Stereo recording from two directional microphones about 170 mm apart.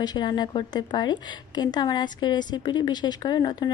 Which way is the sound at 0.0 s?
25° left (ahead or behind).